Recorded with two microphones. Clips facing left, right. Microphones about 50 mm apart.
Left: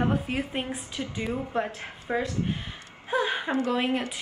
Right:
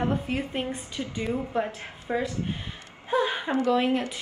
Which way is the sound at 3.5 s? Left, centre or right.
Left.